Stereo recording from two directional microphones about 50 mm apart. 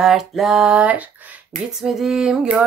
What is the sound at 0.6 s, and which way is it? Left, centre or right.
Speech, right.